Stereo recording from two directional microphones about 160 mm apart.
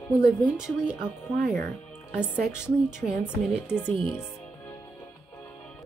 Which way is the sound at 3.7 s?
10° left (ahead or behind).